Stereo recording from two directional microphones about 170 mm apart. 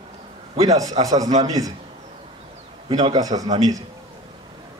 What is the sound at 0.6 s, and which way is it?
A man's voice, 20° right (ahead or behind).